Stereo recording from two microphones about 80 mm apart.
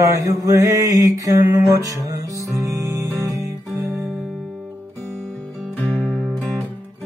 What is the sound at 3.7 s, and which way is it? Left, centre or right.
Music, right.